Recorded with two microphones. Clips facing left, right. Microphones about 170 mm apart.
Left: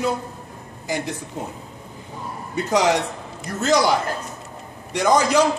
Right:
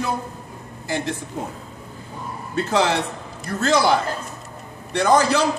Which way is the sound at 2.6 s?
15° left (ahead or behind).